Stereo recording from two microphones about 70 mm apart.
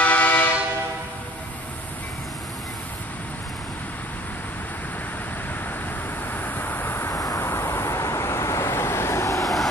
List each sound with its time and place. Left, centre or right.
0.0 s train: left
6.3 s vehicle: left
9.4 s vehicle: centre